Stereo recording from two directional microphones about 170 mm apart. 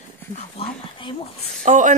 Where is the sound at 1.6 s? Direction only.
45° right (ahead or behind).